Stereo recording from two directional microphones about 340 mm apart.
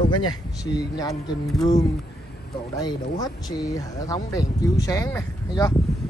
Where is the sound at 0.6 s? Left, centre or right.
Centre.